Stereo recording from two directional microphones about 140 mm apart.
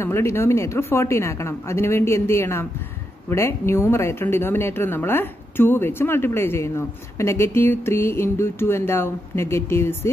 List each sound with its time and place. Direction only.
0.0 s a woman's voice: 20° left (ahead or behind)